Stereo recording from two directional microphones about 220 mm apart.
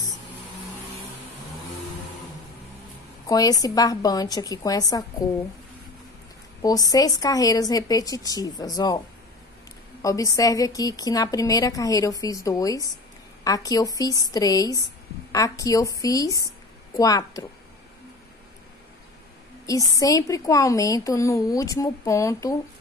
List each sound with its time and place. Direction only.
3.3 s a woman's voice: 15° left (ahead or behind)
6.6 s a woman's voice: 15° left (ahead or behind)
10.0 s a woman's voice: 15° left (ahead or behind)
19.6 s a woman's voice: 15° left (ahead or behind)